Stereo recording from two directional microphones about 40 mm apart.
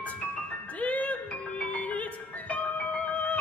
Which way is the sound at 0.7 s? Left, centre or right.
Left.